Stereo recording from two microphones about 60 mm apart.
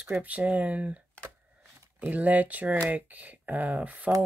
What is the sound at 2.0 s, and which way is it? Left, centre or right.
Speech, right.